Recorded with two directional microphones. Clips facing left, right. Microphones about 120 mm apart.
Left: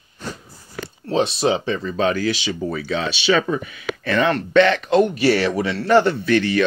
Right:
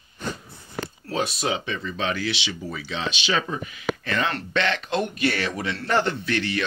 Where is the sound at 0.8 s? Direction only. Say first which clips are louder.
Left 8 dB; 25° left (ahead or behind); by 3.0 s 50° left (ahead or behind).